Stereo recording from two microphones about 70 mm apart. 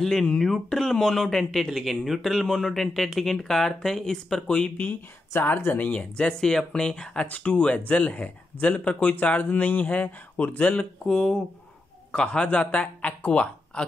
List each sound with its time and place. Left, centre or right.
0.0 s speech: centre
5.3 s speech: left
11.1 s speech: centre